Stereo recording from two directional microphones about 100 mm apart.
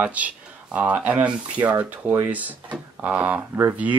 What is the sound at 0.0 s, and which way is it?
Speech, 15° right (ahead or behind).